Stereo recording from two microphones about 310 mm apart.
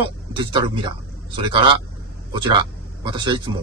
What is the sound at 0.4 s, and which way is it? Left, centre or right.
A man's voice, centre.